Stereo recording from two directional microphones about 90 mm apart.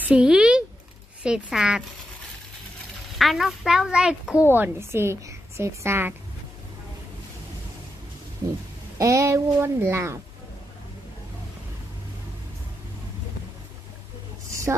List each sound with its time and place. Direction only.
0.0 s a sound: 10° right (ahead or behind)
1.2 s a child's voice: 10° right (ahead or behind)
3.2 s a child's voice: centre (ahead or behind)
4.5 s a woman's voice: 25° right (ahead or behind)
8.9 s a child's voice: 35° right (ahead or behind)
14.5 s a sound: 35° right (ahead or behind)